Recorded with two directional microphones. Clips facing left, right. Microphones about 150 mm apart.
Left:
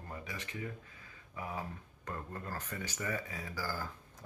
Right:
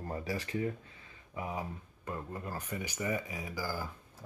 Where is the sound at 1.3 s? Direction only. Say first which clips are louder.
Right 3 dB; 20° right (ahead or behind).